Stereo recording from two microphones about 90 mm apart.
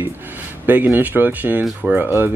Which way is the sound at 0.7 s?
20° right (ahead or behind).